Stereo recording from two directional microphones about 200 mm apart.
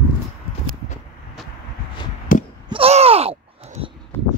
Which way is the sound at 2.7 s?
30° right (ahead or behind).